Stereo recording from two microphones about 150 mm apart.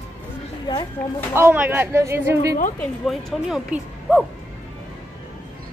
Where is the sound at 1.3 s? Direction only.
15° right (ahead or behind).